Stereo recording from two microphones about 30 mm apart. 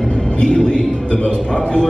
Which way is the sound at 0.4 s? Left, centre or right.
Left.